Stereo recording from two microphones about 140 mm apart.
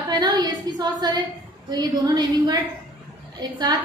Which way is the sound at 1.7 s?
30° right (ahead or behind).